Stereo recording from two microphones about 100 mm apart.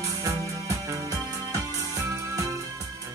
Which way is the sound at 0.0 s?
35° right (ahead or behind).